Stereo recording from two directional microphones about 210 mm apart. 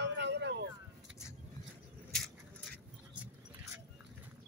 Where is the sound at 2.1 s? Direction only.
Centre (ahead or behind).